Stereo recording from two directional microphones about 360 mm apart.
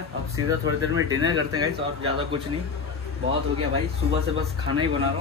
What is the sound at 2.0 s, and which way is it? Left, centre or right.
Speech, centre.